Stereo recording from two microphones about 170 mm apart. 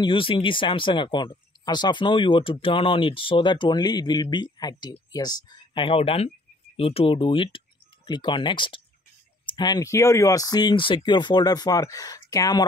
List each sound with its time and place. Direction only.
0.0 s speech: 30° left (ahead or behind)